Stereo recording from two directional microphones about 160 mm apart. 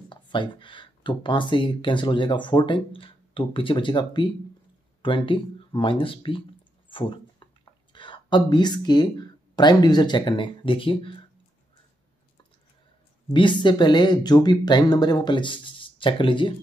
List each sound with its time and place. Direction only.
0.1 s speech: 30° left (ahead or behind)
6.9 s a sound: 30° left (ahead or behind)
7.9 s speech: 30° left (ahead or behind)
13.3 s speech: 30° left (ahead or behind)